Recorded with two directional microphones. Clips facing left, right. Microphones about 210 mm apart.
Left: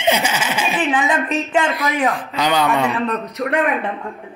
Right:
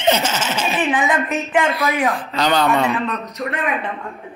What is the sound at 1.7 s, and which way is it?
Speech, 15° left (ahead or behind).